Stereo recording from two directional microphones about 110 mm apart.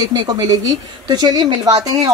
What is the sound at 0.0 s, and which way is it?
A woman's voice, 35° right (ahead or behind).